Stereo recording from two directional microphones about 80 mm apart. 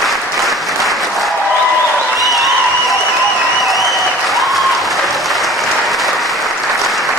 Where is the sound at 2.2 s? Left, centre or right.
Centre.